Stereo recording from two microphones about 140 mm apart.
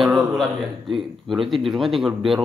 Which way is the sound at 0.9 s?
Centre (ahead or behind).